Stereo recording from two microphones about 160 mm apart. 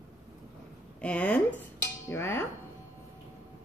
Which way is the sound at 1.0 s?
10° left (ahead or behind).